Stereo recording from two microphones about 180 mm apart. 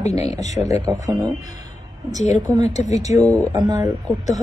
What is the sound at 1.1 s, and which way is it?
Speech, 20° right (ahead or behind).